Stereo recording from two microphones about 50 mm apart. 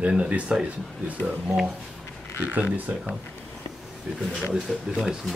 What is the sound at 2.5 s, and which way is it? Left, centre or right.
Speech, right.